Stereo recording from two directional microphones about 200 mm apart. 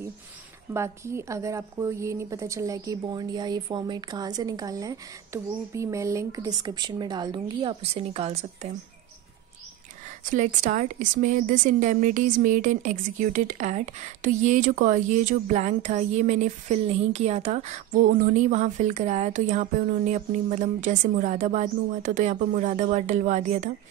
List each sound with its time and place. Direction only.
0.7 s a woman's voice: 15° right (ahead or behind); by 8.7 s 30° right (ahead or behind)
10.3 s a woman's voice: 35° right (ahead or behind)